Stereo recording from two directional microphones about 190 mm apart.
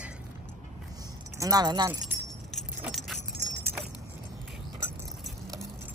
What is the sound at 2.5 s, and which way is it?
Keys jangling, centre (ahead or behind).